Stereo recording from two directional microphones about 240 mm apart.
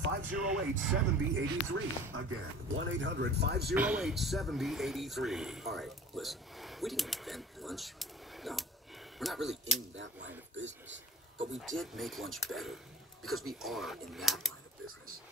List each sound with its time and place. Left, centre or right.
0.3 s speech: centre
1.3 s speech: right
3.7 s speech: centre
9.9 s speech: right
11.5 s speech: centre